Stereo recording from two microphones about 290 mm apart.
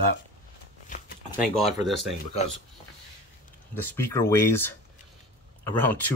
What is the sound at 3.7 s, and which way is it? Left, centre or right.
Speech, centre.